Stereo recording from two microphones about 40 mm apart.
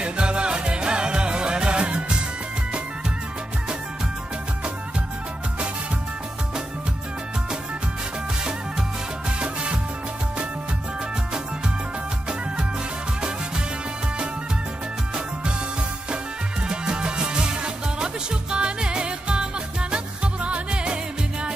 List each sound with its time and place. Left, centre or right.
0.0 s music: right
9.4 s music: right
16.6 s music: right